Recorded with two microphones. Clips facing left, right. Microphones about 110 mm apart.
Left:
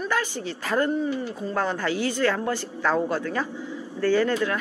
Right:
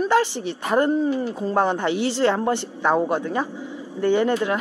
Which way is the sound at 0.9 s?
35° right (ahead or behind).